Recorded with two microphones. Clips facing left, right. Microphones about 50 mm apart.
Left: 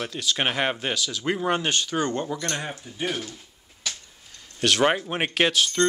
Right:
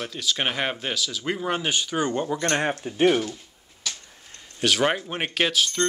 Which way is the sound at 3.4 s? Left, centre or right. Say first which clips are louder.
Right 1 dB; centre.